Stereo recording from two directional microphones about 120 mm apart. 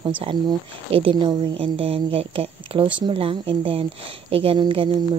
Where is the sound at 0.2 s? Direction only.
45° right (ahead or behind).